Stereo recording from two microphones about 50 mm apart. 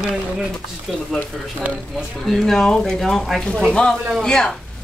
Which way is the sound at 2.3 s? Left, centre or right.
Centre.